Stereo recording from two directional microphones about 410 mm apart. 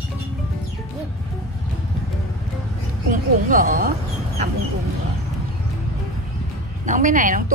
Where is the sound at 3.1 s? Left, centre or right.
Centre.